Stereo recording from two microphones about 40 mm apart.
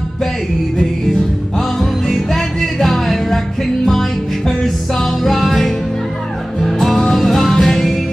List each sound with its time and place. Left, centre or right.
1.8 s music: centre
5.2 s music: centre